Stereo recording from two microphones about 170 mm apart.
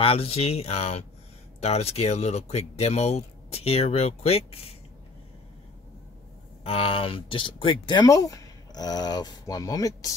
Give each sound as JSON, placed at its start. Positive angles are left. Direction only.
{"t": 0.0, "sound": "speech", "side_deg": 35}
{"t": 6.6, "sound": "speech", "side_deg": 35}